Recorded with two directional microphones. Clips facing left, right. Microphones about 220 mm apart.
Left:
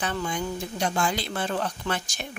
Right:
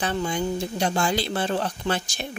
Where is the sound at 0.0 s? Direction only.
30° right (ahead or behind).